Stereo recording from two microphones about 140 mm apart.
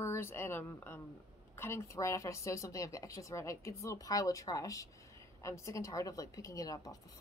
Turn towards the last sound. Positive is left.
turn(degrees=25)  # may be behind; listen again after turning